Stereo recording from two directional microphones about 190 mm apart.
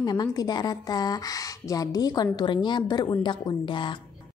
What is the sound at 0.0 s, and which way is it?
A woman's voice, 20° left (ahead or behind).